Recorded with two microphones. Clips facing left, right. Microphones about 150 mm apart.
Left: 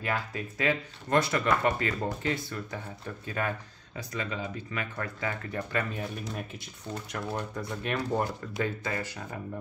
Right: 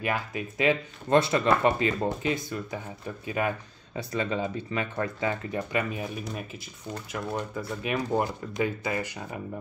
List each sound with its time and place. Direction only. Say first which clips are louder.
0.0 s speech: right 2 dB; 15° right (ahead or behind)
3.9 s speech: right 6 dB; 30° right (ahead or behind)